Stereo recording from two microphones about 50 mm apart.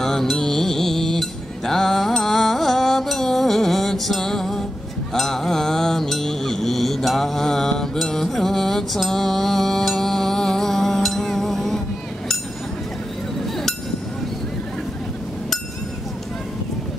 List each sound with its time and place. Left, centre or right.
0.0 s mantra: centre
1.7 s music: centre
5.1 s mantra: centre